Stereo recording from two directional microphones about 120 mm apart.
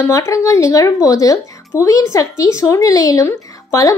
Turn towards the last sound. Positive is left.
turn(degrees=25)  # may be behind; listen again after turning